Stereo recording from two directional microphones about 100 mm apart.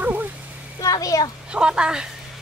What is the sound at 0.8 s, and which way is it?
Speech, 40° left (ahead or behind).